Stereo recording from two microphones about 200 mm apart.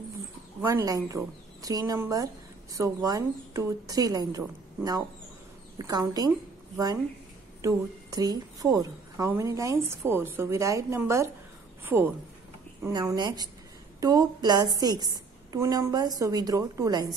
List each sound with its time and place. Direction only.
0.6 s a woman's voice: 15° right (ahead or behind)
7.6 s a woman's voice: 20° right (ahead or behind)